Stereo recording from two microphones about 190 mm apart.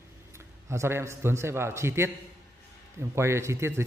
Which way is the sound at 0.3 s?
15° right (ahead or behind).